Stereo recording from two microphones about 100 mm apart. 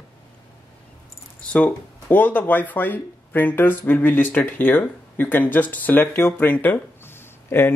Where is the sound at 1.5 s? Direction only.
15° left (ahead or behind).